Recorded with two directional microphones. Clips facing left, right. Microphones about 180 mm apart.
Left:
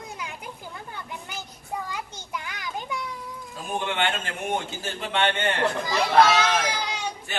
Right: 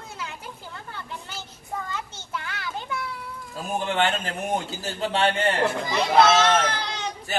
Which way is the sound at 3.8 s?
40° right (ahead or behind).